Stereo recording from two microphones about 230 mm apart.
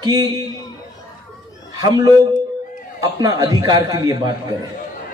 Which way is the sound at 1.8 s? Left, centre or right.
Centre.